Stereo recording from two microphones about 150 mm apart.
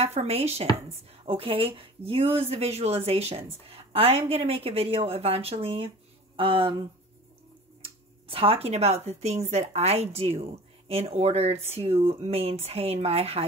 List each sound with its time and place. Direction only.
0.0 s speech: 45° right (ahead or behind)
7.8 s speech: 35° right (ahead or behind)